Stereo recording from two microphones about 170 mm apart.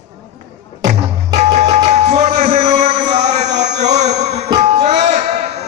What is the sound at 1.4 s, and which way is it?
Music, 40° right (ahead or behind).